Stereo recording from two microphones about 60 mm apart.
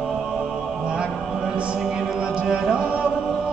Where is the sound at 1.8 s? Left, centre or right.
Centre.